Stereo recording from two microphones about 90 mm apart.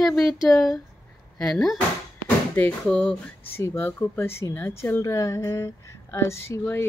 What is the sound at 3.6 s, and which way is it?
Speech, 25° left (ahead or behind).